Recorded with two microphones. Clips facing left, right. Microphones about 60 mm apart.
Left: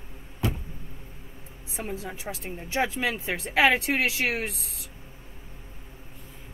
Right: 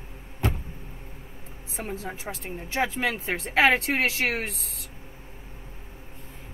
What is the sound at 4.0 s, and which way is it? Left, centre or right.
Speech, centre.